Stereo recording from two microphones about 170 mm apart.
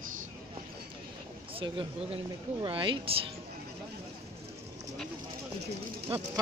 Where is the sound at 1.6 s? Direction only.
30° right (ahead or behind).